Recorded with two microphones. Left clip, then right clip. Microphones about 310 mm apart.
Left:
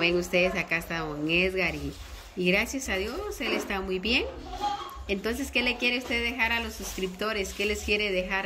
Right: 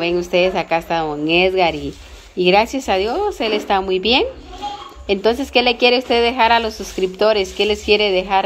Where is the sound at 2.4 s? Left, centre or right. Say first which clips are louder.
Right 12 dB; centre.